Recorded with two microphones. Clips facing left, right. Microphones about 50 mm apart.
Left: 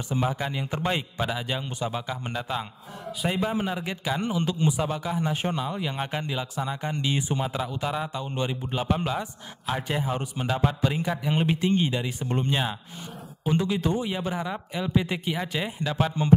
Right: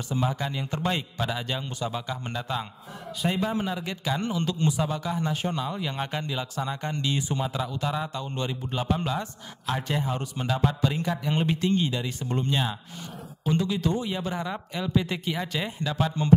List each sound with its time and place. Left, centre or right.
0.1 s a man's voice: centre